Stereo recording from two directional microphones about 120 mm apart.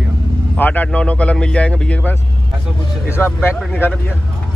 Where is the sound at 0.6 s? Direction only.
15° left (ahead or behind).